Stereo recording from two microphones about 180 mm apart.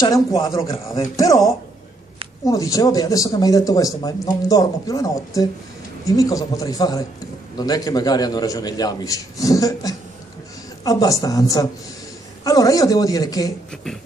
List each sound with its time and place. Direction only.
0.4 s a man's voice: 15° left (ahead or behind)